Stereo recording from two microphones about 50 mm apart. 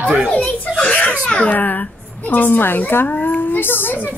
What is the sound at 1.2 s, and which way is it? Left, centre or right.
A woman's voice, left.